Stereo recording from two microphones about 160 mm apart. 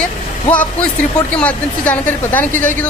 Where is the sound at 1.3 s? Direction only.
10° left (ahead or behind).